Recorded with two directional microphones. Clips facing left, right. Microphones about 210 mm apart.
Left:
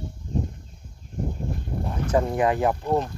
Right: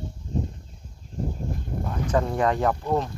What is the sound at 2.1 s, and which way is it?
Speech, 10° left (ahead or behind).